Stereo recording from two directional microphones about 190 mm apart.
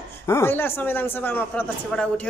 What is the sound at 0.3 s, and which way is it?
Speech, 10° left (ahead or behind).